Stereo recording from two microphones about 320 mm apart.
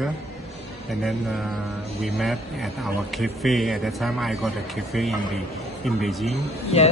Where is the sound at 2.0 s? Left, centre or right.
Centre.